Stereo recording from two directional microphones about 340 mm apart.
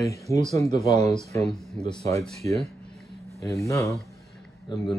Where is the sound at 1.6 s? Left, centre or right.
Centre.